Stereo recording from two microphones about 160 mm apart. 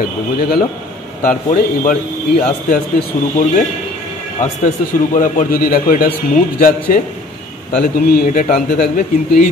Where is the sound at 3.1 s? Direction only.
50° left (ahead or behind).